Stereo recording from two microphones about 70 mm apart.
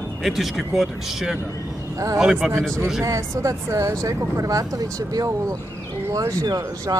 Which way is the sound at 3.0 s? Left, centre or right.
Right.